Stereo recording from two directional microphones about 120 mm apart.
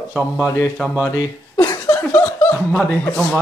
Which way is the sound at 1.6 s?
20° left (ahead or behind).